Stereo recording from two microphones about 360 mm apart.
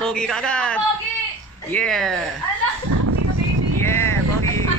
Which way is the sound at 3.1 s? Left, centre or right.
Right.